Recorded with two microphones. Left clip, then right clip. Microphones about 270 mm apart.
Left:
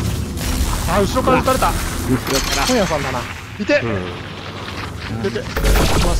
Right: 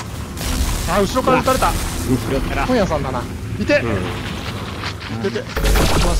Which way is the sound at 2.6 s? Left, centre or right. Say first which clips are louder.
Right 2 dB; centre.